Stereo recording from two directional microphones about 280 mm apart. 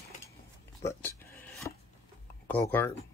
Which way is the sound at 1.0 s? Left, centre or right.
Centre.